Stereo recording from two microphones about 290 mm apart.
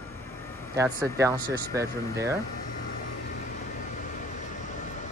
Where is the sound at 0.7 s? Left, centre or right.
Centre.